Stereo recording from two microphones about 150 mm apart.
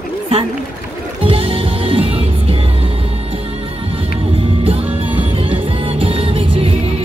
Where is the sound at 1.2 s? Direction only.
35° right (ahead or behind).